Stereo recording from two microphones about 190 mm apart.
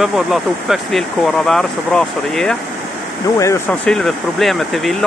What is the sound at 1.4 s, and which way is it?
Speech, 5° left (ahead or behind).